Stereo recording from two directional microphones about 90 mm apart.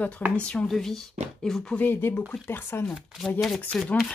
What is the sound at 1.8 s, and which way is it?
Speech, 25° left (ahead or behind).